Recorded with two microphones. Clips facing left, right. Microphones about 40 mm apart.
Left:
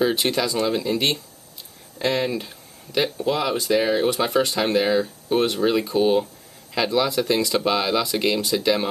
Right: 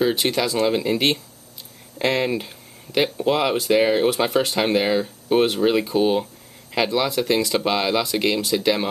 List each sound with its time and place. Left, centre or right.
0.0 s speech: centre
0.7 s speech: centre